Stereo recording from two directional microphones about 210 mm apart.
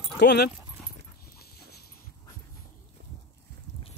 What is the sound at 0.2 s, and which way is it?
Speech, 55° left (ahead or behind).